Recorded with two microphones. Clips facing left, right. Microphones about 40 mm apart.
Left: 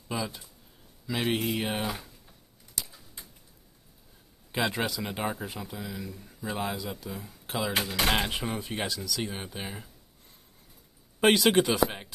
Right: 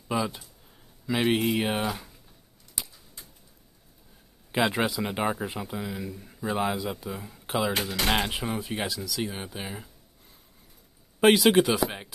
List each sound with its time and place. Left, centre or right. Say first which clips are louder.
0.1 s speech: right 5 dB; centre
2.8 s a sound: even; right
4.5 s speech: right 4 dB; centre
11.1 s speech: right 3 dB; centre